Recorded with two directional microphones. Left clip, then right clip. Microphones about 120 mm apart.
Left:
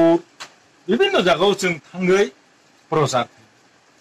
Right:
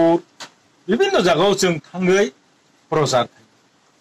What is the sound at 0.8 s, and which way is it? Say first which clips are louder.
Speech: even; 20° right (ahead or behind).